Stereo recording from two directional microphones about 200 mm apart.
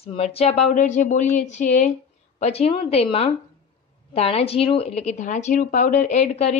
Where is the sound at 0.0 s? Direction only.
30° left (ahead or behind).